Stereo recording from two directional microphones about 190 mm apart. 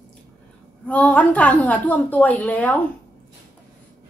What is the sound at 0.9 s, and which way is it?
A woman's voice, 10° left (ahead or behind).